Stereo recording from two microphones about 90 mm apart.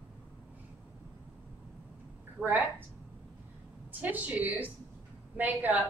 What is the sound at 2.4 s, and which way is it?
Speech, 20° right (ahead or behind).